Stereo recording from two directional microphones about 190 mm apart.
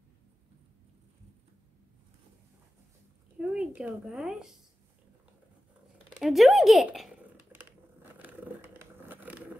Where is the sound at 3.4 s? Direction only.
5° right (ahead or behind).